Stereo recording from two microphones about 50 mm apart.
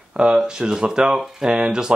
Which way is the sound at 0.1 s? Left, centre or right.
Centre.